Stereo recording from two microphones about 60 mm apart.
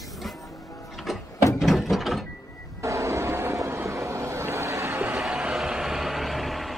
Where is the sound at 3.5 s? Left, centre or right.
Right.